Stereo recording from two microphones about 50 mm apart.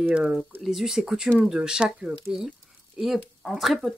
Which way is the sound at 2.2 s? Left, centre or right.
Centre.